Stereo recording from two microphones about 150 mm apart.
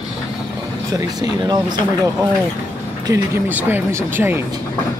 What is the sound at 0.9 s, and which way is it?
Speech, 25° right (ahead or behind).